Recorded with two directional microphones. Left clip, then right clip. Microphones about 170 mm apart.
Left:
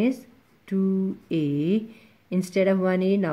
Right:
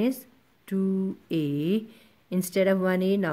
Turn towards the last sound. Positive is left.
turn(degrees=-30)  # may be behind; listen again after turning